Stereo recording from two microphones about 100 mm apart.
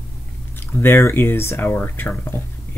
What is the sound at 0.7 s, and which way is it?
Speech, 25° left (ahead or behind).